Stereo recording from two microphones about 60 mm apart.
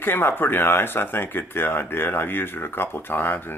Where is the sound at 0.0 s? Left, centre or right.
Left.